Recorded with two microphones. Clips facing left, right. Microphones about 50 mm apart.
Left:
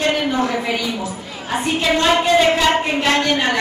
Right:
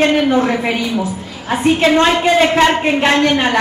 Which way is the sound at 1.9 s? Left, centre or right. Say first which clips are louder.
Right 3 dB; right.